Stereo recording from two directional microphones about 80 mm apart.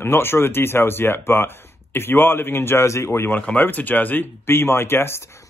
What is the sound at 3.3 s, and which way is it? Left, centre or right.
Speech, centre.